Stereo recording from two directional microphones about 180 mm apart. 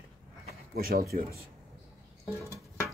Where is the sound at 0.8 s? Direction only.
55° right (ahead or behind).